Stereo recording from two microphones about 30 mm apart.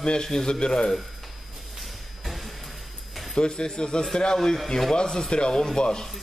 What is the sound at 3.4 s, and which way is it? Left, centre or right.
A man's voice, left.